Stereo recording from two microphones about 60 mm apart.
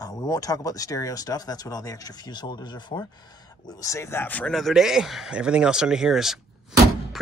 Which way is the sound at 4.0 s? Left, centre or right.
Left.